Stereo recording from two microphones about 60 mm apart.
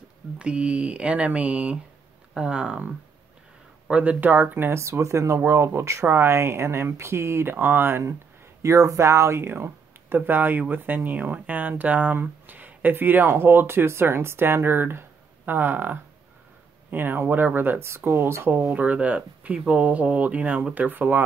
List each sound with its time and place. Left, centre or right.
0.4 s speech: centre
3.9 s speech: right
5.4 s speech: right
7.5 s speech: right
8.6 s speech: right
9.5 s speech: right
17.8 s speech: right
18.7 s speech: right